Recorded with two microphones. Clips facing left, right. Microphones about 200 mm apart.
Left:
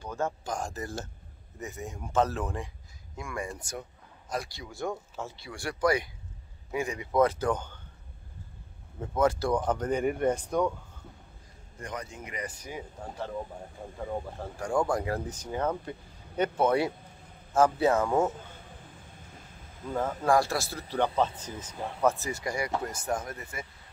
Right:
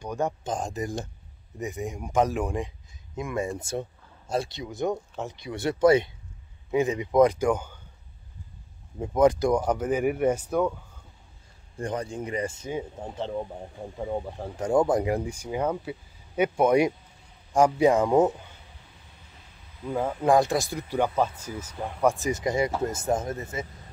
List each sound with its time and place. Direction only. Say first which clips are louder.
0.0 s speech: right 4 dB; 15° right (ahead or behind)
9.0 s speech: right 6 dB; 15° right (ahead or behind)
11.8 s speech: right 8 dB; 30° right (ahead or behind)
19.9 s speech: right 4 dB; 15° right (ahead or behind)